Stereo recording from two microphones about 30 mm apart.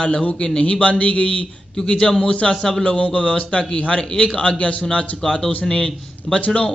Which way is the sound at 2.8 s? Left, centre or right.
Left.